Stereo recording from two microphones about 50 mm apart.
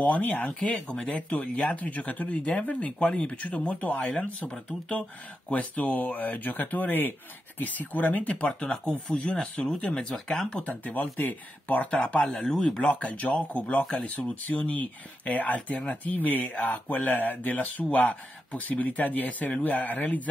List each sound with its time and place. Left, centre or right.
0.8 s speech: centre
1.7 s speech: left
8.5 s speech: centre
10.6 s speech: left
11.9 s speech: left
12.4 s speech: centre
12.8 s speech: left